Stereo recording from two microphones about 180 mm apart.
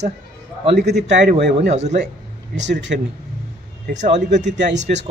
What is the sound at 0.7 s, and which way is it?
Speech, 70° right (ahead or behind).